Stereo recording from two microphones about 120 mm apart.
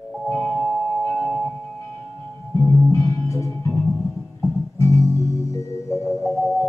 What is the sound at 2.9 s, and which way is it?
Music, 25° left (ahead or behind).